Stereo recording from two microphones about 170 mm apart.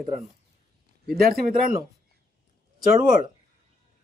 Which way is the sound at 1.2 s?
60° right (ahead or behind).